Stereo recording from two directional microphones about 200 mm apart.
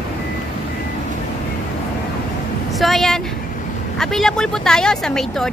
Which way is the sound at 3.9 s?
Centre (ahead or behind).